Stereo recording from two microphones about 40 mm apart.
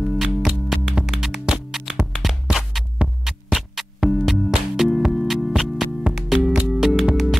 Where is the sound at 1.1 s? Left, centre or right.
Centre.